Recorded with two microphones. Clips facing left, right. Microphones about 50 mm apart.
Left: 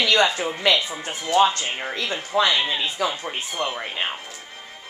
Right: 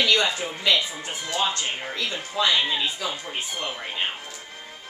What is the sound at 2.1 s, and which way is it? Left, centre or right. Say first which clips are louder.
Speech: left 3 dB; left.